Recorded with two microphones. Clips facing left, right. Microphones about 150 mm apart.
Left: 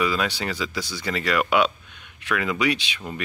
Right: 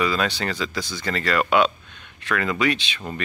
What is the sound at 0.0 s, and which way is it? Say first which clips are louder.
Speech: right 1 dB; 10° left (ahead or behind).